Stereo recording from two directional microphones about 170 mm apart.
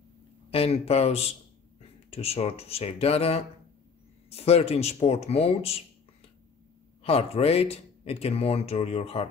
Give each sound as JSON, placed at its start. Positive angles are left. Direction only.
{"t": 0.5, "sound": "speech", "side_deg": 35}
{"t": 7.0, "sound": "speech", "side_deg": 35}